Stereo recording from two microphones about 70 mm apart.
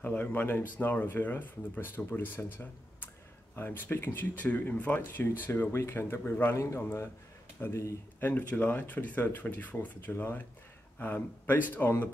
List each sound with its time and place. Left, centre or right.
0.0 s speech: left
5.2 s speech: left